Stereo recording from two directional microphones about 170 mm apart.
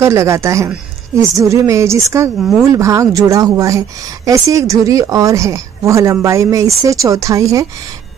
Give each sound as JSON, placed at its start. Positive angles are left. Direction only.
{"t": 0.0, "sound": "a woman's voice", "side_deg": -15}